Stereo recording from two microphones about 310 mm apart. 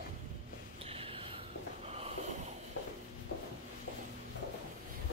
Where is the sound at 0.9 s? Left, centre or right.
Centre.